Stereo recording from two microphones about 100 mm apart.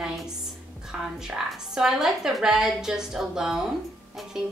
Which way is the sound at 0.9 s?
5° right (ahead or behind).